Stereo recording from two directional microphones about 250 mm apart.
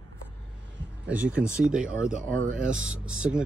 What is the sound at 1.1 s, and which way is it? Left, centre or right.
Speech, centre.